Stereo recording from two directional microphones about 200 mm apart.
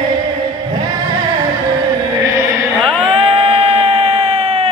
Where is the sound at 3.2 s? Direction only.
30° right (ahead or behind).